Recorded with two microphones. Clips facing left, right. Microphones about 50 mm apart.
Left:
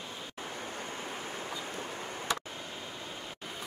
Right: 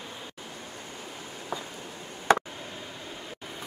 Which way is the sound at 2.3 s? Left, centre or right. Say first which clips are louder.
Right 13 dB; right.